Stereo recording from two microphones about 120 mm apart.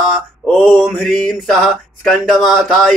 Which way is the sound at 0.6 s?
Centre (ahead or behind).